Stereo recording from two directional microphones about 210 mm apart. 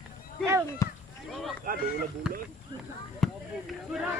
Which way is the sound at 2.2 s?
5° right (ahead or behind).